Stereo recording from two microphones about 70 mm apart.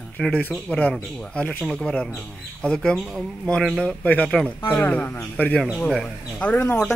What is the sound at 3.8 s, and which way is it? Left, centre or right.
Speech, centre.